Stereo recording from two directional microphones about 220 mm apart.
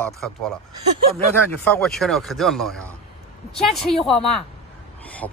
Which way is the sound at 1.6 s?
5° left (ahead or behind).